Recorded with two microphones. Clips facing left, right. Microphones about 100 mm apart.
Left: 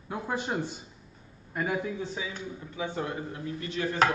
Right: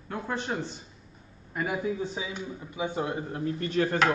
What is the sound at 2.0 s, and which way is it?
A man's voice, 15° right (ahead or behind).